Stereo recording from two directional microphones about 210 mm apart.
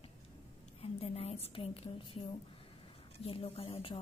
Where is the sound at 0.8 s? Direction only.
30° left (ahead or behind).